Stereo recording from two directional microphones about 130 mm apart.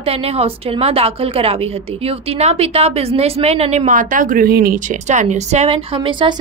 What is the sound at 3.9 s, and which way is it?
A woman's voice, 85° right.